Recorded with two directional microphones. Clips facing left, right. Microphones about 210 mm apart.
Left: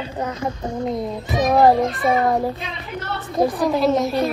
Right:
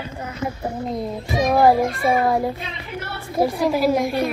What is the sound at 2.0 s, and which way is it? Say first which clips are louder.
Speech: even; 30° right (ahead or behind).